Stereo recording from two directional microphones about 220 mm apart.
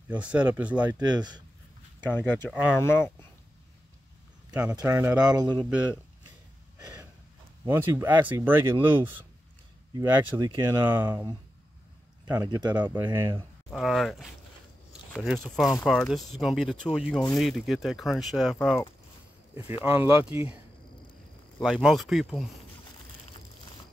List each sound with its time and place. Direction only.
0.1 s speech: 5° right (ahead or behind)
2.0 s speech: 10° left (ahead or behind)
4.7 s speech: 15° right (ahead or behind)
7.6 s speech: 10° right (ahead or behind)
12.7 s speech: 10° right (ahead or behind)
13.7 s speech: centre (ahead or behind)
15.4 s speech: centre (ahead or behind)
19.8 s speech: 10° right (ahead or behind)
21.5 s speech: centre (ahead or behind)